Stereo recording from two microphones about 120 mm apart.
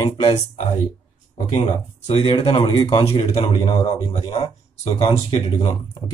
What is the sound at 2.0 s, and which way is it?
A man's voice, 50° left (ahead or behind).